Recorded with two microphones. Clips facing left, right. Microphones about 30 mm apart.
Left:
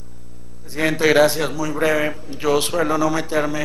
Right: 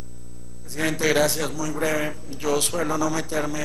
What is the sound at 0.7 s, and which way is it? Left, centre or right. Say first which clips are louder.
A man's voice: left 6 dB; left.